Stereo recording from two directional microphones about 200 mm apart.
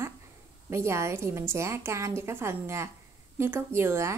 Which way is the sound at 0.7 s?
15° right (ahead or behind).